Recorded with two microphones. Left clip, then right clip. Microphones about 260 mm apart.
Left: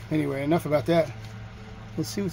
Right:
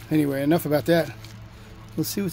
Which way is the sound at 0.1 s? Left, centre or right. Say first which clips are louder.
Right 4 dB; right.